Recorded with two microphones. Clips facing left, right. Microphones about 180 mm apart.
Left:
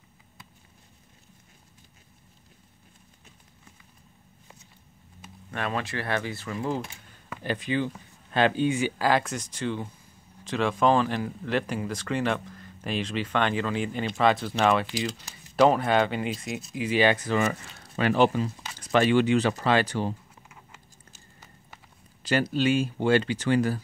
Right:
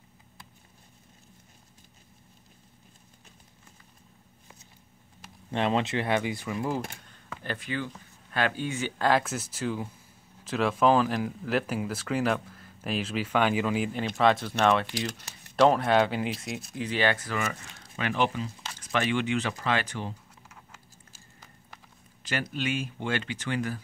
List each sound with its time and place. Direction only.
5.5 s speech: 25° right (ahead or behind); by 6.8 s 10° right (ahead or behind)
7.1 s a sound: 15° left (ahead or behind)
8.3 s speech: 25° left (ahead or behind); by 16.6 s centre (ahead or behind)
16.7 s speech: 10° left (ahead or behind); by 20.2 s 35° left (ahead or behind)
22.2 s speech: 35° left (ahead or behind)